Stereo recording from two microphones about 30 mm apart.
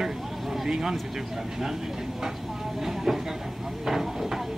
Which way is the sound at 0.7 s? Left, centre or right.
Right.